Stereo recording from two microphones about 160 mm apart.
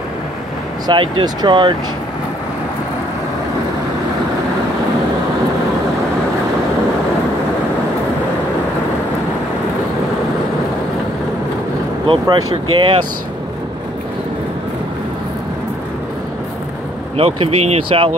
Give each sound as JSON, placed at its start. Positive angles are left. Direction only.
{"t": 0.8, "sound": "speech", "side_deg": -25}
{"t": 12.1, "sound": "speech", "side_deg": -25}
{"t": 17.2, "sound": "speech", "side_deg": -35}